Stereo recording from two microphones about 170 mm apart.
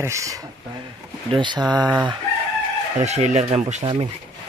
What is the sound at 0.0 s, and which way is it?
Speech, 20° right (ahead or behind).